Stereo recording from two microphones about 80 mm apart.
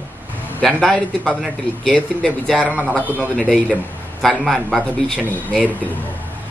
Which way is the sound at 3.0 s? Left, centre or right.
Right.